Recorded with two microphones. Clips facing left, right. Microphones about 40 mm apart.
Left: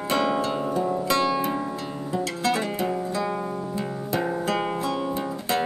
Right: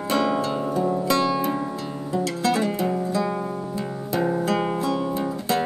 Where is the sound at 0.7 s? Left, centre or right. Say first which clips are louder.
Right 2 dB; centre.